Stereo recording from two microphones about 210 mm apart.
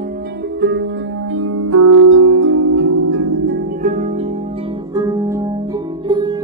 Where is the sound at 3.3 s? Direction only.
50° right (ahead or behind); by 4.4 s 30° right (ahead or behind).